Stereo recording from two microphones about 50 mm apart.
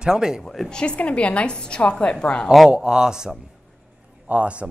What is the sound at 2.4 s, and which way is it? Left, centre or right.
Speech, centre.